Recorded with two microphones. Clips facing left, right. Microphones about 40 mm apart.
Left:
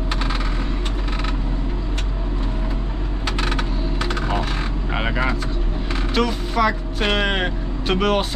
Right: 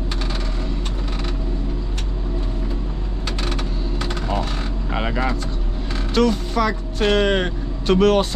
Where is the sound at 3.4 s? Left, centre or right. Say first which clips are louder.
Left 2 dB; centre.